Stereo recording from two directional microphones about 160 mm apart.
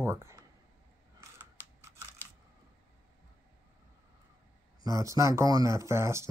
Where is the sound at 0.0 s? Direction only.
15° right (ahead or behind).